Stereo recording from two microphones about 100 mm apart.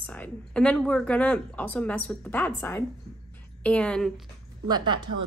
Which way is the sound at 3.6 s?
10° left (ahead or behind).